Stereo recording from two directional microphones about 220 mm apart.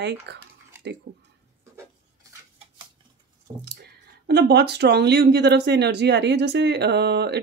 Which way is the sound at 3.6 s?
50° right (ahead or behind).